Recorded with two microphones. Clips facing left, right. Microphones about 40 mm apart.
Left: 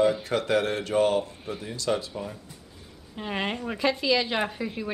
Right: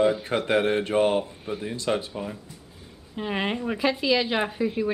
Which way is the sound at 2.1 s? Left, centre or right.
Centre.